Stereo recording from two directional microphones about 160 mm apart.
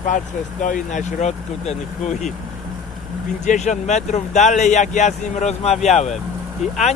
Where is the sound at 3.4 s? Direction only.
50° left (ahead or behind).